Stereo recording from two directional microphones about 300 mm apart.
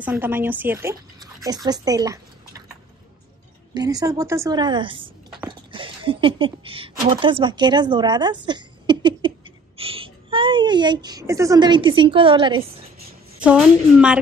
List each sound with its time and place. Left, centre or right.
0.0 s a woman's voice: centre
3.7 s a woman's voice: centre
8.5 s a sound: centre
9.8 s speech: centre
13.4 s a woman's voice: centre